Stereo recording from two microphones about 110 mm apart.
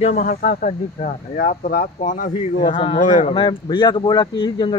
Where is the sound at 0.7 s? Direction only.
90° left.